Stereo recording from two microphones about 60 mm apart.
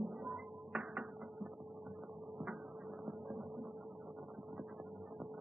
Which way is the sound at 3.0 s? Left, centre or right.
Centre.